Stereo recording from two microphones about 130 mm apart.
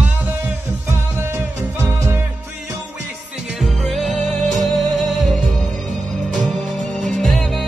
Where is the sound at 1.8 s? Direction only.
20° right (ahead or behind).